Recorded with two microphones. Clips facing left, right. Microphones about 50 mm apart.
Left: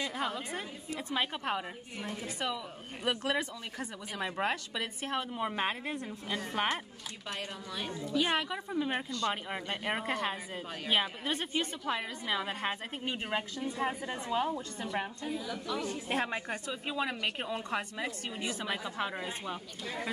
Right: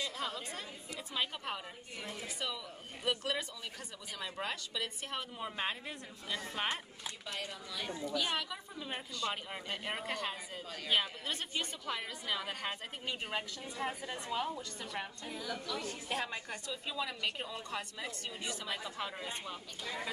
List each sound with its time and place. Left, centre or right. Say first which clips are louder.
0.0 s a woman's voice: left 5 dB; left
15.3 s speech: even; centre
15.6 s a woman's voice: left 5 dB; left
19.2 s speech: left 4 dB; centre